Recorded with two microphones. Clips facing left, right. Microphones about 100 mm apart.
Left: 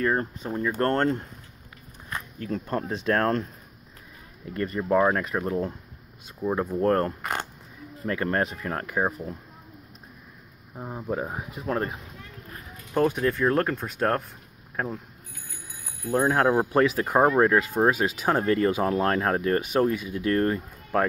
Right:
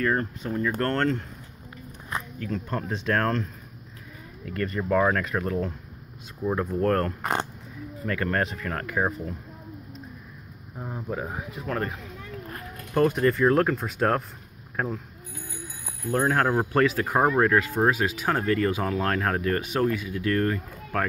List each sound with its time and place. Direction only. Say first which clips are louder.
0.0 s speech: even; 25° left (ahead or behind)
2.3 s speech: left 4 dB; 35° left (ahead or behind)
4.5 s speech: left 1 dB; 20° left (ahead or behind)
6.4 s speech: even; 10° left (ahead or behind)
6.8 s speech: left 2 dB; 20° left (ahead or behind)
7.2 s speech: right 3 dB; 25° right (ahead or behind)
8.1 s speech: left 1 dB; 25° left (ahead or behind)
10.8 s speech: even; 10° left (ahead or behind)
11.1 s speech: left 3 dB; 25° left (ahead or behind)
12.9 s speech: right 2 dB; centre (ahead or behind)
16.1 s speech: left 2 dB; 15° left (ahead or behind)